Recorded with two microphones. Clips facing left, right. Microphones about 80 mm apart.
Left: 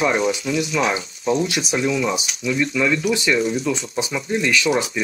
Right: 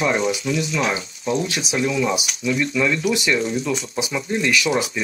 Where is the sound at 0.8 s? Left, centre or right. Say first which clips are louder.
Left 2 dB; left.